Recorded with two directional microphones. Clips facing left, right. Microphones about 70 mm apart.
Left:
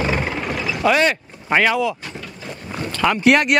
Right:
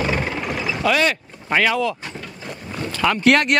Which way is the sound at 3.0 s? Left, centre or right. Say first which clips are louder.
Left 1 dB; centre.